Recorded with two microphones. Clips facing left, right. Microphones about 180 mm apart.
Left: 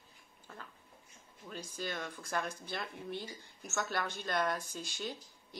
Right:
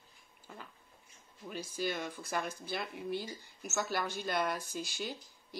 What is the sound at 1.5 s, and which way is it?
Speech, 10° right (ahead or behind).